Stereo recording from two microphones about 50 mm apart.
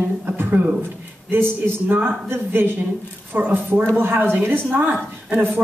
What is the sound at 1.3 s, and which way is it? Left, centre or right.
A woman's voice, right.